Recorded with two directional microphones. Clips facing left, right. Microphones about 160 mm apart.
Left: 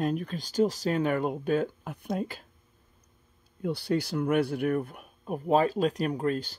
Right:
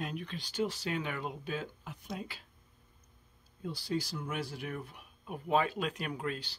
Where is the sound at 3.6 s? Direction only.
60° left (ahead or behind); by 6.5 s 45° left (ahead or behind).